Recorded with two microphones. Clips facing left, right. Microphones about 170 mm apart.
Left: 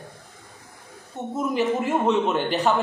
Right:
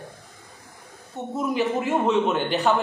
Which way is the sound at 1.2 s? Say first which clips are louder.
Even; centre (ahead or behind).